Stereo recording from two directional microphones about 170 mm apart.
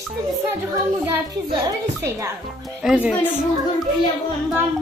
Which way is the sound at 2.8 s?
Centre (ahead or behind).